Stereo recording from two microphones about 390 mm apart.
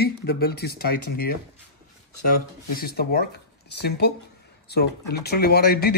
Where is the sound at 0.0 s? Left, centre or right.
Left.